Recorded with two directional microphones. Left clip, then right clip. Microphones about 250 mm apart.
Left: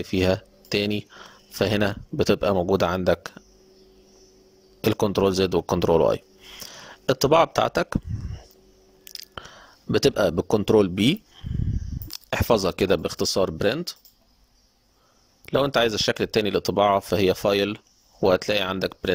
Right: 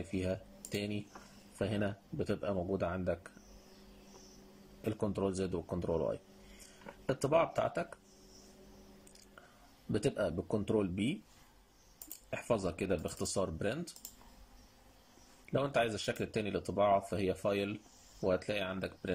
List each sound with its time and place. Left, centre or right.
0.1 s speech: left
4.8 s speech: left
9.9 s speech: left
15.4 s speech: left